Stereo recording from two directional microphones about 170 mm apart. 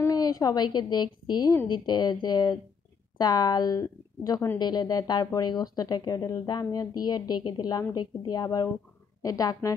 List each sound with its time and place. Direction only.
0.0 s a woman's voice: 20° left (ahead or behind)